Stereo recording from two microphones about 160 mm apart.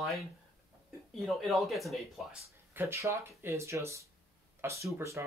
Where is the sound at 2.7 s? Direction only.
15° right (ahead or behind).